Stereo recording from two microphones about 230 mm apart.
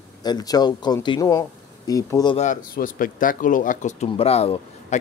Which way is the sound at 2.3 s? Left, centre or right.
Left.